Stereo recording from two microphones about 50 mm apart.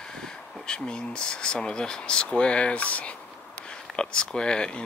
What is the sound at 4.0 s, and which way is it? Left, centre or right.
Speech, centre.